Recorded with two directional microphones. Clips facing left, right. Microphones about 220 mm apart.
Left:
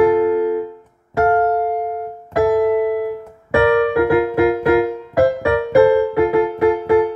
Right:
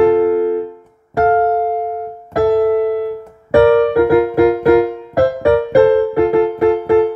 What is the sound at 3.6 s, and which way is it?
Music, 35° right (ahead or behind).